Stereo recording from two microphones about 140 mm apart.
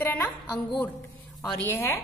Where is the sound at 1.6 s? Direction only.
15° left (ahead or behind).